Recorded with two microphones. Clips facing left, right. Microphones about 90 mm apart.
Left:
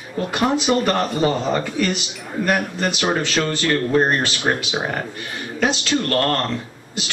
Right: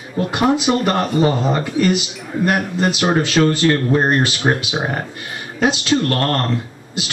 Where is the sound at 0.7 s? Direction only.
20° right (ahead or behind).